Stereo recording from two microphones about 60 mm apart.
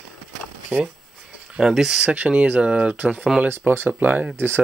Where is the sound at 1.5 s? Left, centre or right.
Centre.